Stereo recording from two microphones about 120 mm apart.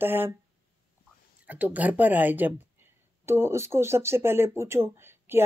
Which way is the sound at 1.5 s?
15° right (ahead or behind).